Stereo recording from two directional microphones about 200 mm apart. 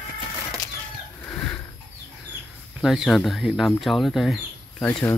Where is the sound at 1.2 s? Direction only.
10° left (ahead or behind).